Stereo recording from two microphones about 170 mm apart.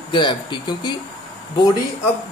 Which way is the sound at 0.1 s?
25° left (ahead or behind).